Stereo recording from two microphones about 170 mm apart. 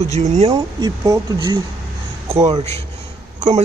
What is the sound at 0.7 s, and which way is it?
Speech, 20° right (ahead or behind).